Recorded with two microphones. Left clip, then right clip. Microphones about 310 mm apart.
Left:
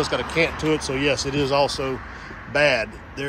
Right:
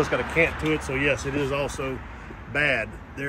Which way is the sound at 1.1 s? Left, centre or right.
Left.